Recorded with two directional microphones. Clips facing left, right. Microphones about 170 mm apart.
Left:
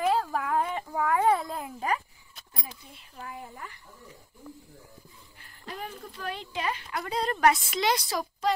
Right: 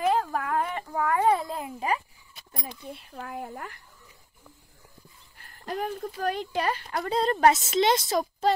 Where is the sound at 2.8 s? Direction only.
55° right (ahead or behind).